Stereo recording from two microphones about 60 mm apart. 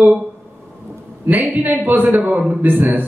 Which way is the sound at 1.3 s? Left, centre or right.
Right.